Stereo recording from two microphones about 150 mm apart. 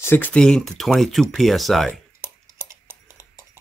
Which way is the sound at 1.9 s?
15° right (ahead or behind).